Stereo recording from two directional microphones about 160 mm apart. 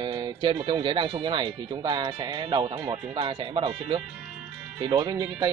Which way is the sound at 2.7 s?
10° right (ahead or behind).